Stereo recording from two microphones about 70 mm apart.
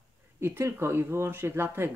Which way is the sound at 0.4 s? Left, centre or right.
Right.